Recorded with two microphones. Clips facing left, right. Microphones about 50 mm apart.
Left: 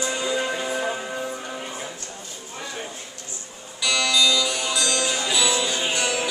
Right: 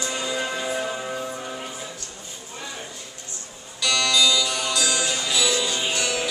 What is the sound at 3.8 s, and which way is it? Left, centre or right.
Music, centre.